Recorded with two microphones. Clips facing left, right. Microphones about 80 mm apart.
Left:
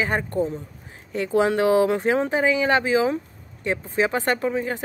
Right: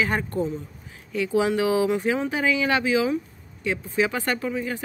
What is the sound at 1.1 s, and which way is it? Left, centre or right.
Speech, left.